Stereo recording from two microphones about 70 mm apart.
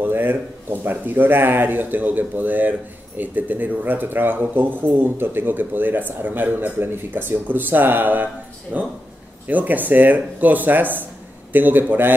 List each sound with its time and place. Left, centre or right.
0.0 s speech: right